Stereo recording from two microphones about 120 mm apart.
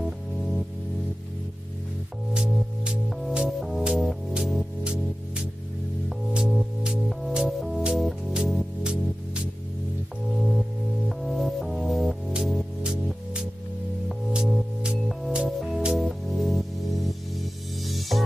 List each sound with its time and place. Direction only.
0.0 s music: centre (ahead or behind)
2.3 s music: 5° right (ahead or behind)
6.0 s music: 5° right (ahead or behind)